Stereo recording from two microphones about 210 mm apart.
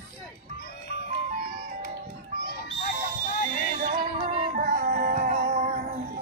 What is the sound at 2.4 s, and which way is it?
Music, 50° left (ahead or behind).